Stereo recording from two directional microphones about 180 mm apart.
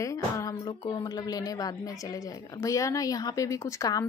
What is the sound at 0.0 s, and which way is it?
Speech, 20° left (ahead or behind).